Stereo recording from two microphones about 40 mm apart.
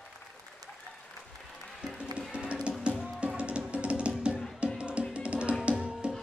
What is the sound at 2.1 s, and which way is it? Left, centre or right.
Music, right.